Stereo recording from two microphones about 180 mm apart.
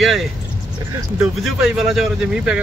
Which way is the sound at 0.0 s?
Centre (ahead or behind).